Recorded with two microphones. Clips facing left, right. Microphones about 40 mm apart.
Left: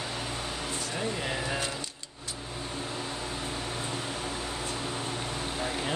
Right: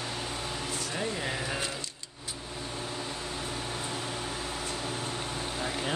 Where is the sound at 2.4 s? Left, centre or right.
Centre.